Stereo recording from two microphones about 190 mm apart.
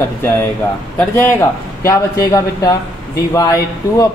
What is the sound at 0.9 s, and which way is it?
Speech, 10° left (ahead or behind).